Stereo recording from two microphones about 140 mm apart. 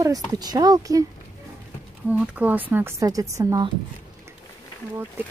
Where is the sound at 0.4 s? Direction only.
30° right (ahead or behind).